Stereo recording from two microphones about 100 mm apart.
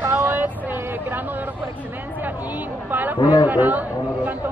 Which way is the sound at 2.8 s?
20° right (ahead or behind).